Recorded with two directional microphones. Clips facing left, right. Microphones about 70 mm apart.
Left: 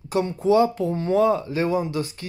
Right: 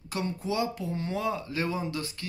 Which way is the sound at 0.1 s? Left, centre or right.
Left.